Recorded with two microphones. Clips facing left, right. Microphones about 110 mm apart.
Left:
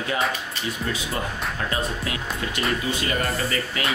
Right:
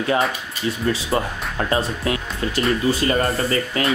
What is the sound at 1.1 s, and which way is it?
Speech, 40° right (ahead or behind).